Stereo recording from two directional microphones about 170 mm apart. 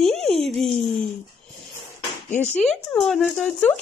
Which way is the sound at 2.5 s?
5° left (ahead or behind).